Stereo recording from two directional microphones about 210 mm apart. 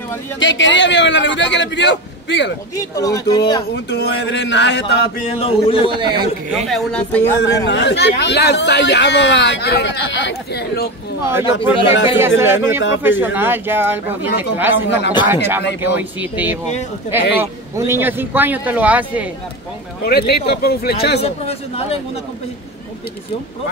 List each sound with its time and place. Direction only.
0.4 s speech: 60° left (ahead or behind)
2.7 s speech: 15° left (ahead or behind)
3.7 s speech: 55° left (ahead or behind)
5.2 s speech: 25° left (ahead or behind)
5.9 s a man's voice: 20° right (ahead or behind)
6.7 s speech: 5° left (ahead or behind)
7.4 s speech: 55° left (ahead or behind)
11.2 s speech: 10° right (ahead or behind)
11.7 s speech: 25° left (ahead or behind)
12.2 s speech: 10° right (ahead or behind)
20.1 s speech: 50° left (ahead or behind)
21.2 s speech: 30° left (ahead or behind)